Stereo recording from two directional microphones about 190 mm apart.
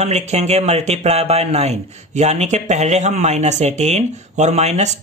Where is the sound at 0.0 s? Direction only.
35° right (ahead or behind).